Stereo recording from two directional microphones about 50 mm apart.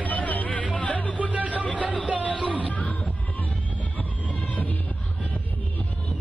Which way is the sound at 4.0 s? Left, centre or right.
Left.